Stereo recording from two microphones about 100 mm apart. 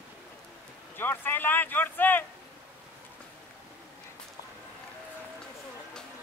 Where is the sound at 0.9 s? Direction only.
20° left (ahead or behind).